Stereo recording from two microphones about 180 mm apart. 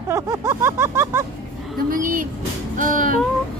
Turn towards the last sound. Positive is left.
turn(degrees=-45)  # may be behind; listen again after turning